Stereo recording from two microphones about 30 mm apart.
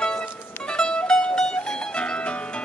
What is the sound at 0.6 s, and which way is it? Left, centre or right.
Mandolin, left.